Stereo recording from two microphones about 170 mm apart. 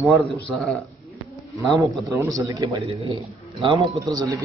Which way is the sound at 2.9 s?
35° right (ahead or behind).